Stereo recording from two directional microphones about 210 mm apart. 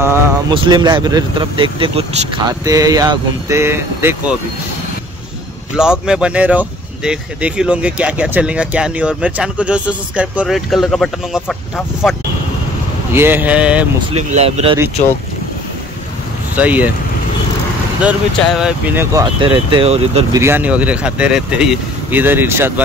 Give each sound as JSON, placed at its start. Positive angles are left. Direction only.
{"t": 0.0, "sound": "a sound", "side_deg": -10}
{"t": 0.6, "sound": "speech", "side_deg": -20}
{"t": 5.8, "sound": "speech", "side_deg": -5}
{"t": 14.1, "sound": "speech", "side_deg": -30}
{"t": 16.5, "sound": "speech", "side_deg": -5}
{"t": 18.0, "sound": "speech", "side_deg": -5}
{"t": 19.1, "sound": "speech", "side_deg": -20}
{"t": 20.3, "sound": "speech", "side_deg": -10}